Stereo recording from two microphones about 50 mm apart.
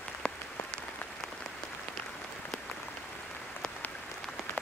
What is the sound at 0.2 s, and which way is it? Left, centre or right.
Rain on surface, centre.